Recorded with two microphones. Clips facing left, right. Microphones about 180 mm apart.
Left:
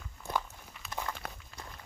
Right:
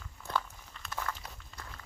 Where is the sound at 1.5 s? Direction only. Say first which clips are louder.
Left 1 dB; 5° left (ahead or behind).